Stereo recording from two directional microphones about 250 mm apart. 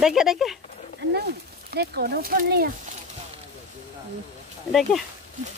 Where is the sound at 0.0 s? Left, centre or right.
Centre.